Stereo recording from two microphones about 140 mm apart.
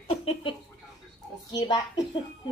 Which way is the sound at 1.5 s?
30° left (ahead or behind).